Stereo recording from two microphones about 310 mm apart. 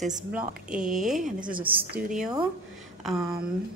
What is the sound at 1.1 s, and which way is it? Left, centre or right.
Speech, right.